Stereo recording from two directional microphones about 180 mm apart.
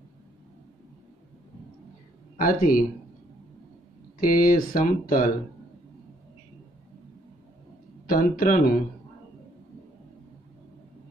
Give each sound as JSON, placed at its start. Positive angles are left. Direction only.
{"t": 2.3, "sound": "speech", "side_deg": 50}
{"t": 4.2, "sound": "speech", "side_deg": 50}
{"t": 8.1, "sound": "speech", "side_deg": 50}